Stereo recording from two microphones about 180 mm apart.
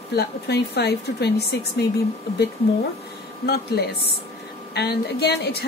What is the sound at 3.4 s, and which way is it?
A woman's voice, 60° left (ahead or behind).